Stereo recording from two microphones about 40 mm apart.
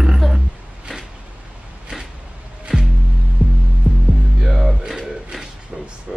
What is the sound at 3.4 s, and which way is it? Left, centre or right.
Music, right.